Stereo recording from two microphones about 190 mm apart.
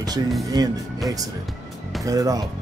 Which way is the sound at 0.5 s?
20° right (ahead or behind).